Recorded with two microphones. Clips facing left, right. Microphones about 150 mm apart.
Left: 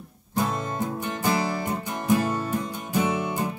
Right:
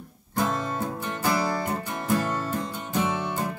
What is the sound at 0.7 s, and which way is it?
Music, 15° left (ahead or behind).